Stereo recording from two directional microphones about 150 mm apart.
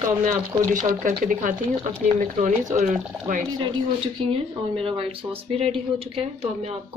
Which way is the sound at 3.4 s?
25° right (ahead or behind).